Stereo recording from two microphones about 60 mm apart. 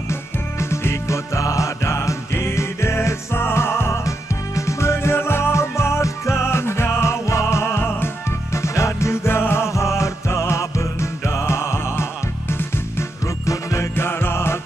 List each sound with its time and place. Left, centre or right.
0.1 s music: left
8.5 s music: left
13.5 s music: left
13.9 s music: left